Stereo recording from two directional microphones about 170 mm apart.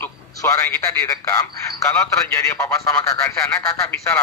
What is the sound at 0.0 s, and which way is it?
A man's voice, 15° left (ahead or behind).